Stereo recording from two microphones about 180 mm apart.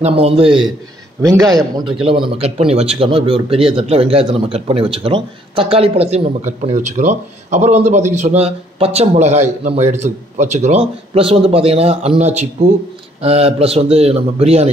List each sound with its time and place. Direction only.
0.0 s speech: 30° right (ahead or behind)
1.2 s a man's voice: 20° right (ahead or behind); by 14.7 s 35° right (ahead or behind)